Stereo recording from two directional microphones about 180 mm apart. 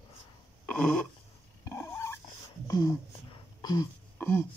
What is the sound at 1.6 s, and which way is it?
Dog, 15° left (ahead or behind).